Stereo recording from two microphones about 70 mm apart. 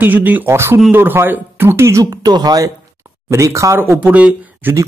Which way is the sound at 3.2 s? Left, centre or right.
Right.